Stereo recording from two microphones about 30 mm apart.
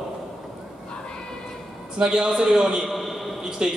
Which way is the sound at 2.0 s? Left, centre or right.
Right.